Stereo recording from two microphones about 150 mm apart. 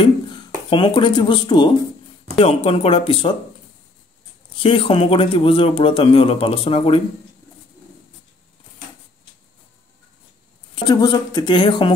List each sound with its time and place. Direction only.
0.7 s a man's voice: 35° left (ahead or behind)
2.3 s a man's voice: 40° left (ahead or behind)
4.6 s a man's voice: 40° left (ahead or behind)
10.7 s a man's voice: 30° left (ahead or behind)